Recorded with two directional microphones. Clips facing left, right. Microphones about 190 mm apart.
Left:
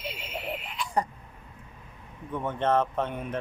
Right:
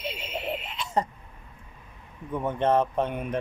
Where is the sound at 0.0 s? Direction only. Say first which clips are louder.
Right 3 dB; 20° right (ahead or behind).